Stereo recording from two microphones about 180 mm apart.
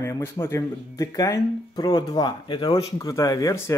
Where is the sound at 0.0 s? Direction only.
15° left (ahead or behind).